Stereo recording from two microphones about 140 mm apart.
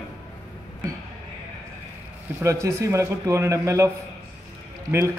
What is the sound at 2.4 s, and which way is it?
A man's voice, 20° right (ahead or behind).